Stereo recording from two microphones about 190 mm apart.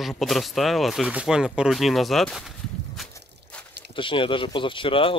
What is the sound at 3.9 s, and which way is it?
Speech, 25° left (ahead or behind).